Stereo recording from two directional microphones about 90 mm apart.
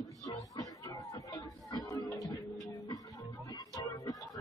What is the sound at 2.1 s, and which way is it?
Music, centre (ahead or behind).